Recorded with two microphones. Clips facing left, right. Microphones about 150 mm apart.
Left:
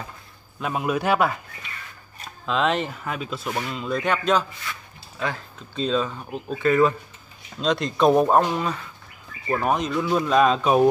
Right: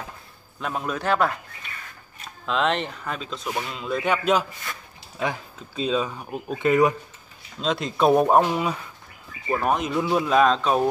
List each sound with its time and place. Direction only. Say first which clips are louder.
0.6 s a man's voice: left 4 dB; 5° left (ahead or behind); by 4.5 s 10° right (ahead or behind)
4.7 s speech: left 1 dB; 45° right (ahead or behind)
5.2 s speech: right 1 dB; 10° right (ahead or behind)
7.6 s speech: left 1 dB; centre (ahead or behind)